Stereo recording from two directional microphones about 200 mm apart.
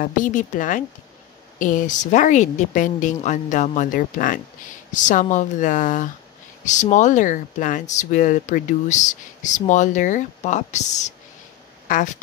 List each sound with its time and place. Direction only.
0.0 s speech: 40° left (ahead or behind)